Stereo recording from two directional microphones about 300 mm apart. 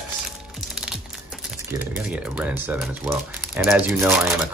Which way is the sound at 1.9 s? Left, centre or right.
Centre.